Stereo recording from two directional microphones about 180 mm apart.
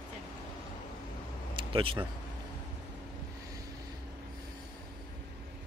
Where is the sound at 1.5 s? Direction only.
30° right (ahead or behind).